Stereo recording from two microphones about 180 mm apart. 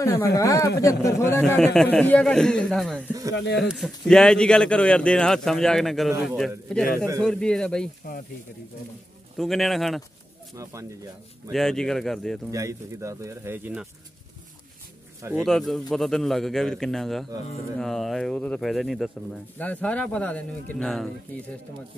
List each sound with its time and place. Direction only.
0.0 s speech: 15° left (ahead or behind)
1.4 s speech: 5° left (ahead or behind)
9.4 s speech: centre (ahead or behind)
10.5 s speech: 20° right (ahead or behind)
11.5 s speech: 5° left (ahead or behind)
12.4 s speech: 20° right (ahead or behind)
15.4 s speech: centre (ahead or behind)